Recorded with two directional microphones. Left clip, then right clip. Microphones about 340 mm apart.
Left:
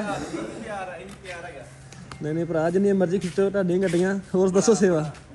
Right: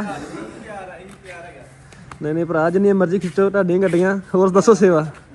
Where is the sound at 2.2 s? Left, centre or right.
Right.